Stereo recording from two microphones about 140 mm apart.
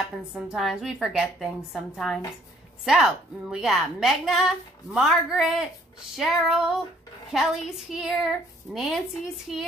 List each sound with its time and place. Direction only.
0.3 s a woman's voice: 5° right (ahead or behind)